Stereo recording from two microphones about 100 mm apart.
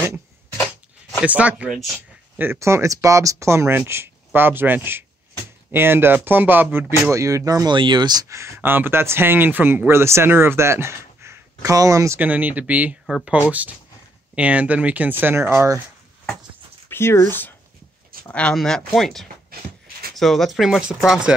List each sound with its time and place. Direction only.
1.2 s speech: 15° right (ahead or behind)
7.1 s speech: 30° right (ahead or behind)
7.7 s speech: 50° right (ahead or behind)
8.3 s speech: 25° right (ahead or behind)
12.2 s speech: 15° right (ahead or behind)
13.0 s speech: 5° right (ahead or behind)
13.3 s speech: 15° right (ahead or behind)
16.9 s speech: 25° left (ahead or behind)
18.3 s speech: 10° left (ahead or behind)